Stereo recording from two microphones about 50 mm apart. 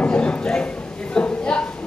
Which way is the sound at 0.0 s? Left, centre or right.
Left.